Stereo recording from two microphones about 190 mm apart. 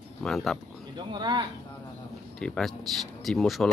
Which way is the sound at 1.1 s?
25° right (ahead or behind).